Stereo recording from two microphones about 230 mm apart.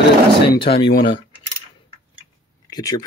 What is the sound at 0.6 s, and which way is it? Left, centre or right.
Speech, left.